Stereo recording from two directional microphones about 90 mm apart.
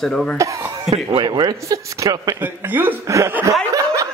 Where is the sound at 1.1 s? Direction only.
55° right (ahead or behind).